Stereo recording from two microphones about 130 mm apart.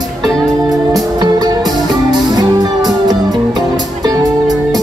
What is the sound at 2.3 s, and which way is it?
Music, 30° right (ahead or behind).